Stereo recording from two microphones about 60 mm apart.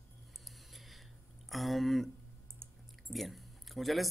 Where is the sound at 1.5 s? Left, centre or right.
Centre.